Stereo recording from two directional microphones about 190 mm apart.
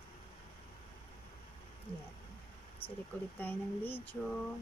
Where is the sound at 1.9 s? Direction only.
30° left (ahead or behind).